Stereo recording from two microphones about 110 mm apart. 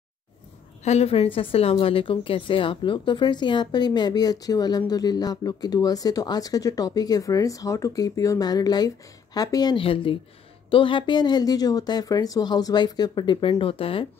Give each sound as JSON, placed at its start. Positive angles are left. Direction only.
{"t": 0.8, "sound": "a woman's voice", "side_deg": 70}
{"t": 9.8, "sound": "a woman's voice", "side_deg": 55}
{"t": 13.5, "sound": "speech", "side_deg": 55}